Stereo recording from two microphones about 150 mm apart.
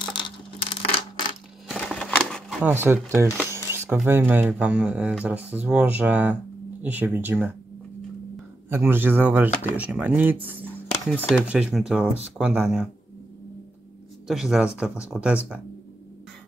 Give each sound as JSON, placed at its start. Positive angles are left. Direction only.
{"t": 0.0, "sound": "coin", "side_deg": 30}
{"t": 1.7, "sound": "a sound", "side_deg": 0}
{"t": 2.6, "sound": "speech", "side_deg": -15}
{"t": 8.6, "sound": "speech", "side_deg": -15}
{"t": 14.2, "sound": "speech", "side_deg": 0}